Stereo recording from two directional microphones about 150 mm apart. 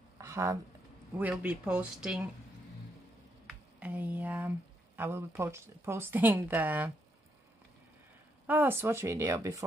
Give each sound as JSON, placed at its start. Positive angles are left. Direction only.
{"t": 0.2, "sound": "a sound", "side_deg": -20}
{"t": 1.1, "sound": "speech", "side_deg": -10}
{"t": 3.4, "sound": "speech", "side_deg": -10}
{"t": 8.5, "sound": "speech", "side_deg": -10}